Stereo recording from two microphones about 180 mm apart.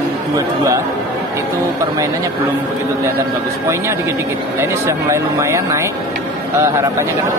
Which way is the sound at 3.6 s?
15° right (ahead or behind).